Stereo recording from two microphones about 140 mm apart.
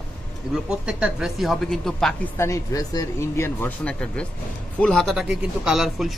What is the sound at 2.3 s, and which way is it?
A man's voice, 20° left (ahead or behind).